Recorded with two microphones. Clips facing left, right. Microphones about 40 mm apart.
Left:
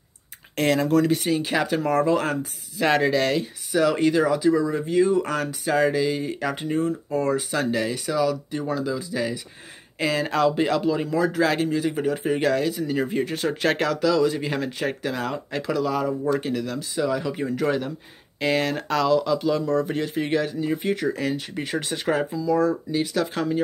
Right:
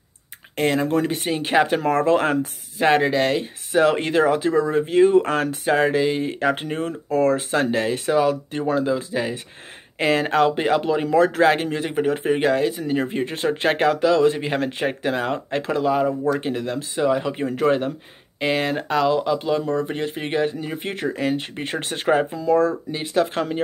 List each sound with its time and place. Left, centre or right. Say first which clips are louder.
0.6 s speech: right 1 dB; centre
0.8 s speech: left 1 dB; right
2.8 s speech: right 2 dB; right
6.8 s speech: right 3 dB; right
7.3 s speech: right 3 dB; right
11.4 s speech: right 3 dB; right
18.4 s speech: right 1 dB; right
22.8 s speech: right 2 dB; right
23.2 s speech: right 1 dB; right